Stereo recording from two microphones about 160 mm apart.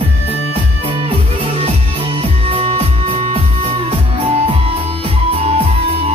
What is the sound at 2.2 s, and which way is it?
Music, 40° right (ahead or behind).